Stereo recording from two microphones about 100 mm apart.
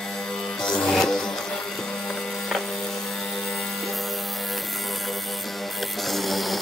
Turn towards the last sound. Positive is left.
turn(degrees=0)  # may be behind; listen again after turning